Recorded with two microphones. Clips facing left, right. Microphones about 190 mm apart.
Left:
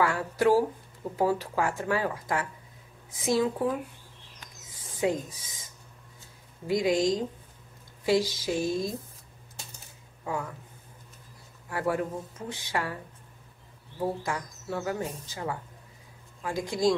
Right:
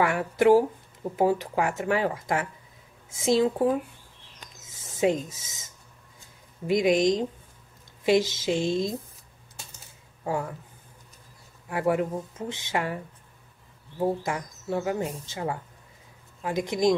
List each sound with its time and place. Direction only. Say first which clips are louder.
0.0 s speech: right 3 dB; 20° right (ahead or behind)
5.0 s speech: right 4 dB; 25° right (ahead or behind)
6.7 s speech: right 3 dB; 20° right (ahead or behind)
10.2 s speech: right 4 dB; 30° right (ahead or behind)
11.9 s speech: right 5 dB; 20° right (ahead or behind)